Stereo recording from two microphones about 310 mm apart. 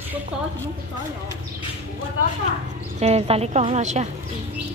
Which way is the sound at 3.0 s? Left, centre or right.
Centre.